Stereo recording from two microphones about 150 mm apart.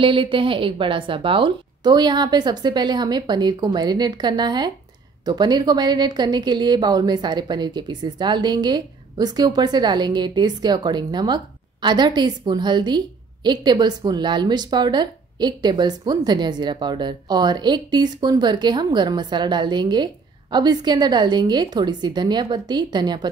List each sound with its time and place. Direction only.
0.0 s a woman's voice: 35° right (ahead or behind)